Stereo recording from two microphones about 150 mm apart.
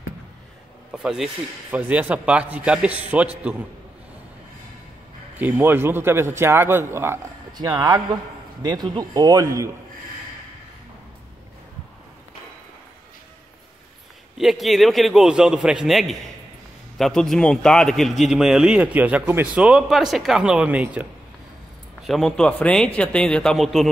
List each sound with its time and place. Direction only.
0.9 s speech: 5° right (ahead or behind)
5.4 s speech: 10° right (ahead or behind)
14.4 s a man's voice: centre (ahead or behind)
22.0 s a man's voice: centre (ahead or behind)